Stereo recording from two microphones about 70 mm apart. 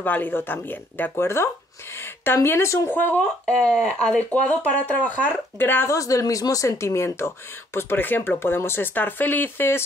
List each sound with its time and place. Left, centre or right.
0.0 s a woman's voice: left
2.9 s speech: left
5.9 s speech: left